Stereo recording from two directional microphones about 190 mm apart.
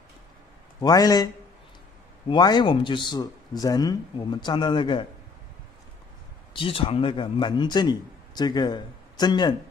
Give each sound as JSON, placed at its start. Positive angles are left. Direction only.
{"t": 0.7, "sound": "a man's voice", "side_deg": 20}
{"t": 6.5, "sound": "a man's voice", "side_deg": 30}